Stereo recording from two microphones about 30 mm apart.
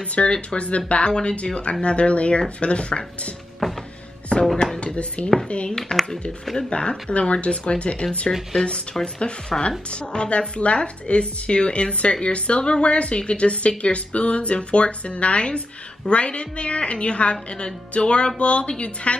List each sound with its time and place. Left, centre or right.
0.1 s speech: left
3.6 s music: centre
4.3 s a sound: left
4.7 s speech: left
5.7 s speech: centre
6.7 s speech: left
7.2 s speech: left
8.3 s speech: centre
9.0 s speech: left